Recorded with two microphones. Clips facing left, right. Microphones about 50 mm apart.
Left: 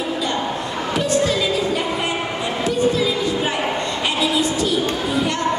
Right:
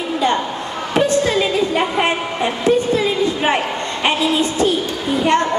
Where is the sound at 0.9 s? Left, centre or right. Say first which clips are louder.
Right 4 dB; right.